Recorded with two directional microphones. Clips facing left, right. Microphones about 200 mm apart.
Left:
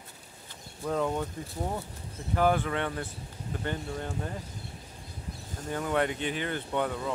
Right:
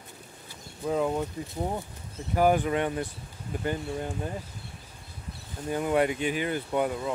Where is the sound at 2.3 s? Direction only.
15° right (ahead or behind).